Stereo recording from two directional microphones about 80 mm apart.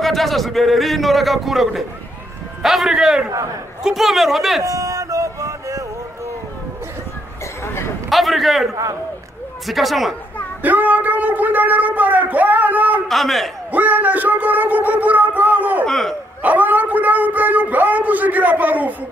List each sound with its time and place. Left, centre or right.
0.0 s a man's voice: centre
4.6 s a sound: right
8.1 s a man's voice: centre
9.7 s a man's voice: centre
10.6 s speech: right
13.1 s a man's voice: centre
13.7 s speech: right
15.8 s a man's voice: centre
16.4 s speech: right